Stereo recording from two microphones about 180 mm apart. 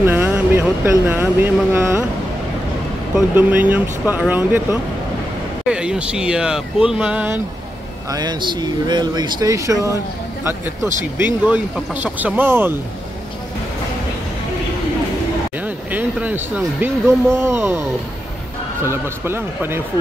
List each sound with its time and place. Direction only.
0.0 s speech: 10° right (ahead or behind)
3.2 s speech: 10° right (ahead or behind)
5.7 s speech: 5° right (ahead or behind)
8.1 s speech: 25° right (ahead or behind)
11.1 s speech: 10° right (ahead or behind)
15.6 s speech: 10° right (ahead or behind)
18.9 s speech: 15° right (ahead or behind)